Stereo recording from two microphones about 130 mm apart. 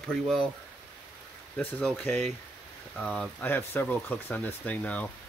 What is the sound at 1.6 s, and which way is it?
Speech, 10° left (ahead or behind).